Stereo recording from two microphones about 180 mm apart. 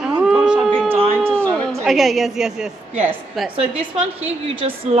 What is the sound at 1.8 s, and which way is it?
Speech, centre (ahead or behind).